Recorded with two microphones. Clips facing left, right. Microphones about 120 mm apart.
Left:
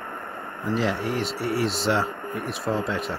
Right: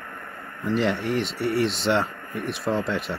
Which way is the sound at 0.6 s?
Centre (ahead or behind).